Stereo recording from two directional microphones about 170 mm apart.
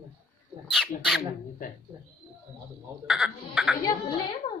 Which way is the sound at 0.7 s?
Centre (ahead or behind).